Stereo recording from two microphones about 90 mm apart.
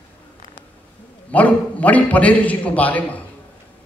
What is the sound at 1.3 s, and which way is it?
A man's voice, 15° left (ahead or behind).